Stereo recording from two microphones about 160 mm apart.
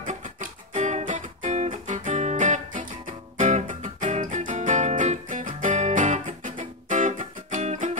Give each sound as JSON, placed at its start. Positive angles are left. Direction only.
{"t": 0.0, "sound": "music", "side_deg": -55}